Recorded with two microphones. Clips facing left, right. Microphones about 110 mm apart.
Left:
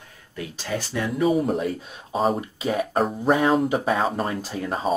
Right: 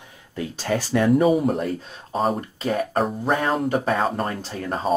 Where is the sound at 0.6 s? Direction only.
60° right (ahead or behind).